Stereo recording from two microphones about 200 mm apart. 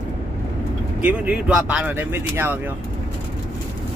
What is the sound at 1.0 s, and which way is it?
Speech, 10° right (ahead or behind).